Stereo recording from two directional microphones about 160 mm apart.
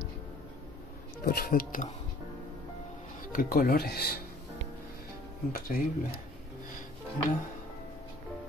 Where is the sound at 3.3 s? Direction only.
65° left (ahead or behind).